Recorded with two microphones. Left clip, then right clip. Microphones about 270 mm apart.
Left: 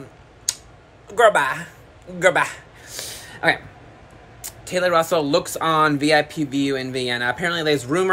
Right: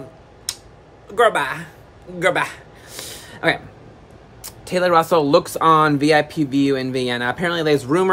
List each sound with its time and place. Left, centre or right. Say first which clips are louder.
0.5 s clicking: left 2 dB; centre
1.0 s speech: left 1 dB; centre
2.1 s a sound: left 1 dB; centre
4.4 s speech: right 2 dB; centre